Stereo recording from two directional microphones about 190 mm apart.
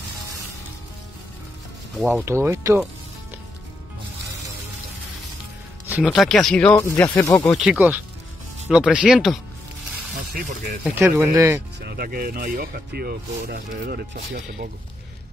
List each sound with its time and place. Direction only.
2.0 s speech: centre (ahead or behind)
2.2 s speech: 15° right (ahead or behind)
5.9 s speech: 5° right (ahead or behind)
7.5 s speech: 5° right (ahead or behind)
11.0 s speech: 10° right (ahead or behind)
11.8 s speech: 55° right (ahead or behind)